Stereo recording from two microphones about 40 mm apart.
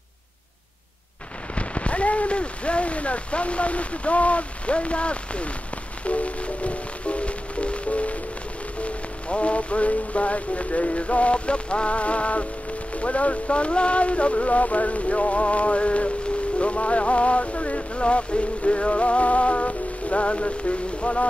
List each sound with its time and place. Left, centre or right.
1.5 s speech: left
16.5 s music: left